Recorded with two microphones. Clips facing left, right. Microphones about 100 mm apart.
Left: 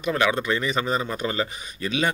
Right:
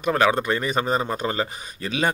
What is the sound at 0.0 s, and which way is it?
Speech, 40° right (ahead or behind).